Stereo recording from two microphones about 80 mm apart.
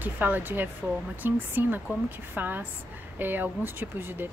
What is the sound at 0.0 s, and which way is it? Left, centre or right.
Speech, right.